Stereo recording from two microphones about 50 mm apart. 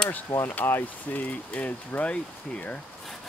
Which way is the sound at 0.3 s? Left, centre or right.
Left.